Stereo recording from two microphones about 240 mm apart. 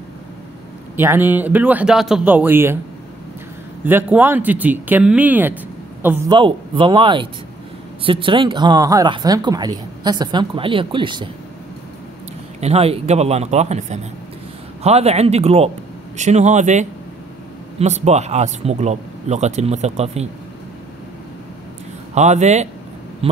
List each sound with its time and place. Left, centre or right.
0.9 s speech: centre
3.8 s speech: centre
12.5 s speech: right
22.1 s speech: right
23.2 s a sound: right